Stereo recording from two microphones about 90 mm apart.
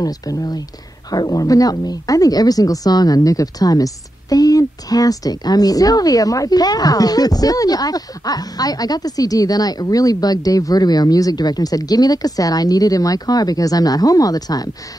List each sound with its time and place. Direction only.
0.0 s a woman's voice: 45° left (ahead or behind)